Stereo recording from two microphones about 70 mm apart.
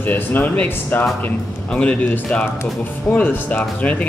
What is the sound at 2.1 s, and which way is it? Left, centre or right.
Speech, centre.